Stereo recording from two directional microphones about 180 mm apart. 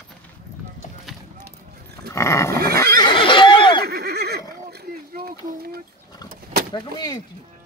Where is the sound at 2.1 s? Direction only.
15° left (ahead or behind).